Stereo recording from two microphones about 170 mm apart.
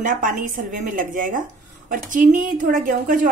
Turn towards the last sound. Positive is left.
turn(degrees=-55)  # may be behind; listen again after turning